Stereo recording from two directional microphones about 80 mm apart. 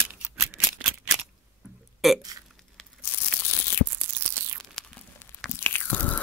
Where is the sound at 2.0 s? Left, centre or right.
Centre.